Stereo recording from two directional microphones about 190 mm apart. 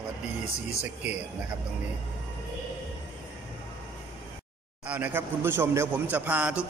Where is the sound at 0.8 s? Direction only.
5° right (ahead or behind).